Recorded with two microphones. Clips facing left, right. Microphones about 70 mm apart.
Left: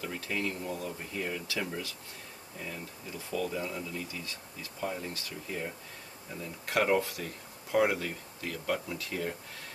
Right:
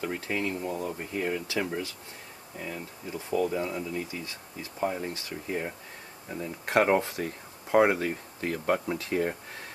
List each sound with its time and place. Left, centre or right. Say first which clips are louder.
0.0 s speech: right 4 dB; right